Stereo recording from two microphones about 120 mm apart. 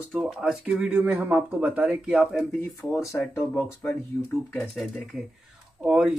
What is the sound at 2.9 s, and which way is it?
Speech, 25° left (ahead or behind).